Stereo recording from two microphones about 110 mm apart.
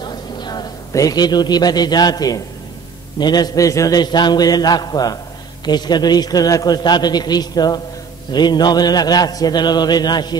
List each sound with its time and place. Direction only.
0.0 s a man's voice: 40° left (ahead or behind)